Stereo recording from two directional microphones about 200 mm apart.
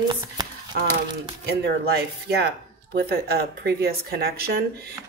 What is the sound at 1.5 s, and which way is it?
Speech, 55° right (ahead or behind).